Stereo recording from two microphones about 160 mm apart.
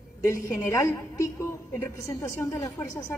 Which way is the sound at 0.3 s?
20° left (ahead or behind).